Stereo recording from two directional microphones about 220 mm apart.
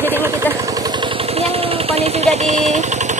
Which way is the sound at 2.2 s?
30° right (ahead or behind).